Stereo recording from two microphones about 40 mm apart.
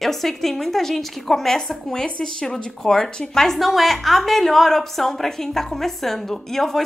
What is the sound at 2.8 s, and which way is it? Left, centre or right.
A woman's voice, centre.